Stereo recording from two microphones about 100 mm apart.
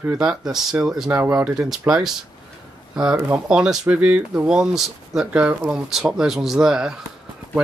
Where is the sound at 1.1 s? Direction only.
20° right (ahead or behind).